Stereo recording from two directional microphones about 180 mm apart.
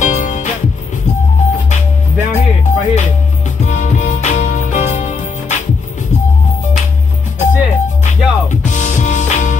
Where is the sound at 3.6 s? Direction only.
40° left (ahead or behind).